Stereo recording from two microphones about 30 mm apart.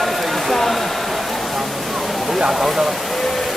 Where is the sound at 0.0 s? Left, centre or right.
Centre.